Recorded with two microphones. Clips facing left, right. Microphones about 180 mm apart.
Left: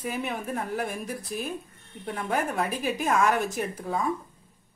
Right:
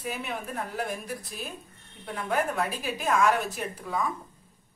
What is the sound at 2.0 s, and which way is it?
A woman's voice, 50° left (ahead or behind).